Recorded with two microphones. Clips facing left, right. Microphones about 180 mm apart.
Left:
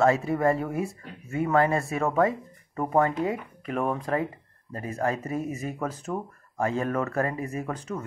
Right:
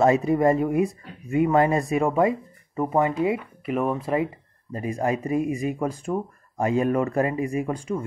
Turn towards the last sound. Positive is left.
turn(degrees=-10)  # may be behind; listen again after turning